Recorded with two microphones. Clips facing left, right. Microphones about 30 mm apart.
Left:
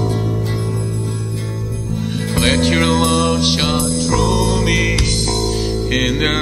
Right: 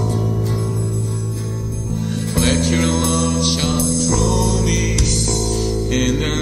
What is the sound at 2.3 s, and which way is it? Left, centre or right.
Music, left.